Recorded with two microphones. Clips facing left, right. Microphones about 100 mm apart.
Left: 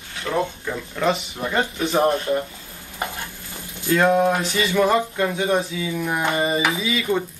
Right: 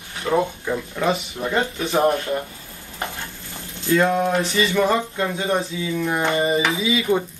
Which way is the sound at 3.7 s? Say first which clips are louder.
Left 1 dB; 15° left (ahead or behind).